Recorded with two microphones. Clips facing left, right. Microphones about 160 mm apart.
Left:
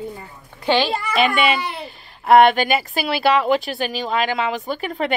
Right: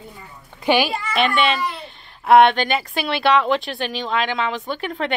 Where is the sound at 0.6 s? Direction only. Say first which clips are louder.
Even; 10° right (ahead or behind).